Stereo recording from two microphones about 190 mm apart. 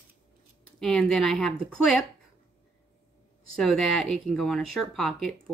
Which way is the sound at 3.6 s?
Centre (ahead or behind).